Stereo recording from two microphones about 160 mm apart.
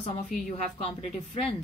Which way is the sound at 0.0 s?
45° left (ahead or behind).